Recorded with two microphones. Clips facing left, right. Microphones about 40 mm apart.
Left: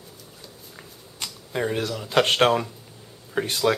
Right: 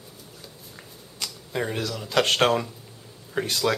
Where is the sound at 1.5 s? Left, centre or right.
Centre.